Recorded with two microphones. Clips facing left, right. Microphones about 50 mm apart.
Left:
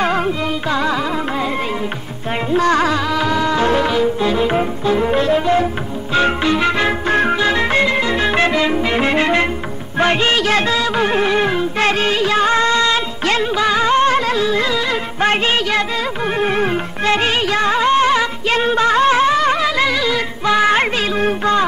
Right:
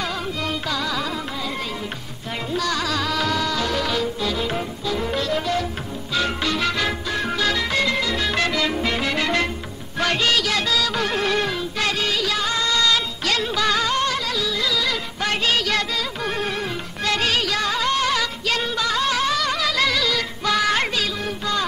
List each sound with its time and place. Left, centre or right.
0.0 s music: left
2.5 s music: left
3.0 s music: centre; by 21.6 s left